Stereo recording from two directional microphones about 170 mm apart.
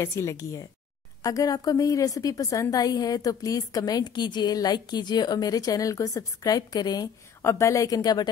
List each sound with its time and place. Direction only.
0.0 s a woman's voice: 15° left (ahead or behind)